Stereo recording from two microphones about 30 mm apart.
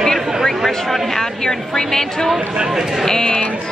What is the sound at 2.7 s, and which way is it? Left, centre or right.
Speech, centre.